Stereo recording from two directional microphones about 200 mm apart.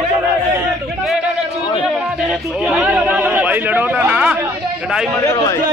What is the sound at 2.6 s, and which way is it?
A man's voice, 5° right (ahead or behind).